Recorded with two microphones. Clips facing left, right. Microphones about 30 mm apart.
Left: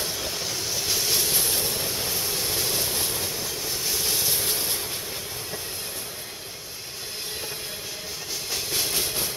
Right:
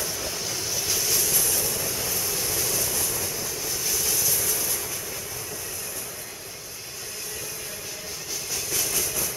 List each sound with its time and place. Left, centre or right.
0.2 s vehicle: centre; by 3.3 s left
3.3 s vehicle: left
8.5 s train: left